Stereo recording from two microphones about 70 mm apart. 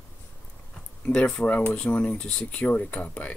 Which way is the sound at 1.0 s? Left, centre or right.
Centre.